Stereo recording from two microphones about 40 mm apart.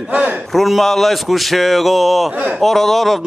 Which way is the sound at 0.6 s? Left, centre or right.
Centre.